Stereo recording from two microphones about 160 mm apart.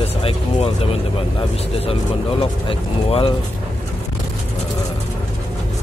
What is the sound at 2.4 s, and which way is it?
Vehicle, 35° left (ahead or behind).